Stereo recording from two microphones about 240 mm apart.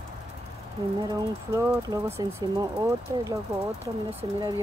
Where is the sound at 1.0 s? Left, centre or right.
Centre.